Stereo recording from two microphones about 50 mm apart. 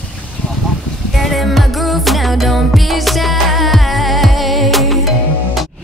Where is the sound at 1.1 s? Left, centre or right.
Centre.